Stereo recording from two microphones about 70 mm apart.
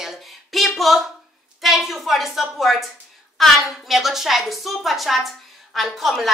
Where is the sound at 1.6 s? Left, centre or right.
Centre.